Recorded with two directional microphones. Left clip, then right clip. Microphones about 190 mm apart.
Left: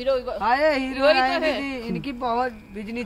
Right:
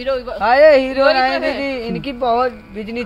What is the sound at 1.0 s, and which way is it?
Speech, 60° left (ahead or behind).